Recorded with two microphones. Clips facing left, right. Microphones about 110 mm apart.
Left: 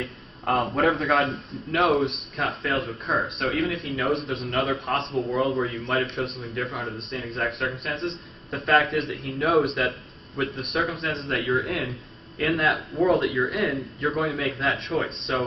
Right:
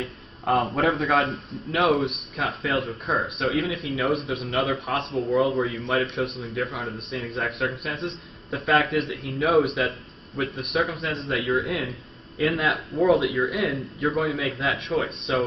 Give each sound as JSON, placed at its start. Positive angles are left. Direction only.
{"t": 0.0, "sound": "a man's voice", "side_deg": 0}
{"t": 8.0, "sound": "a man's voice", "side_deg": -20}
{"t": 8.5, "sound": "speech", "side_deg": -5}